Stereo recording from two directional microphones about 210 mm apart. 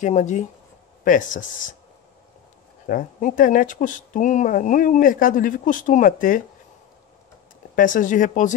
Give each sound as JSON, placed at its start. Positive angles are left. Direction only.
{"t": 0.0, "sound": "speech", "side_deg": 35}
{"t": 2.9, "sound": "speech", "side_deg": 40}
{"t": 7.7, "sound": "speech", "side_deg": 40}